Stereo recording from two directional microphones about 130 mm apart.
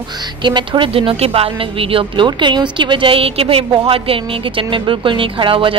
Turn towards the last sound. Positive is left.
turn(degrees=-40)  # may be behind; listen again after turning